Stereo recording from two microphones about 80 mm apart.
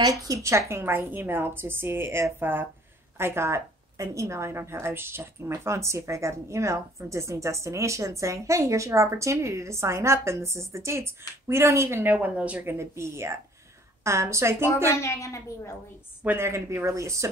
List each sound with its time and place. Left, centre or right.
0.0 s a woman's voice: right; by 12.6 s centre
12.6 s a woman's voice: right
15.0 s a woman's voice: left
16.3 s a woman's voice: right